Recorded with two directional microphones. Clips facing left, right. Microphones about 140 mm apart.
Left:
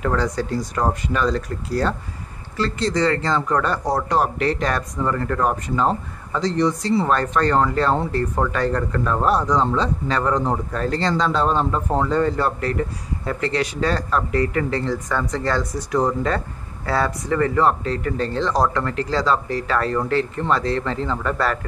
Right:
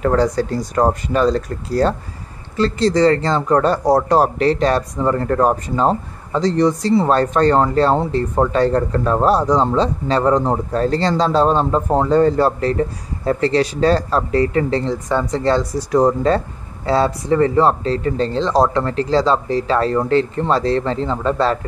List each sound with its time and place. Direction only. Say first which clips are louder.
0.0 s speech: right 6 dB; 35° right (ahead or behind)